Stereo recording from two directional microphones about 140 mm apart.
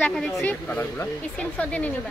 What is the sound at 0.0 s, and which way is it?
Speech, 5° left (ahead or behind).